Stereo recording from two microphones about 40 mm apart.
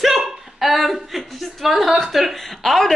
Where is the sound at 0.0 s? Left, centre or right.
Centre.